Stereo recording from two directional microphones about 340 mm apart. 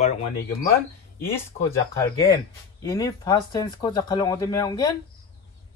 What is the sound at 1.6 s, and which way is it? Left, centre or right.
Speech, centre.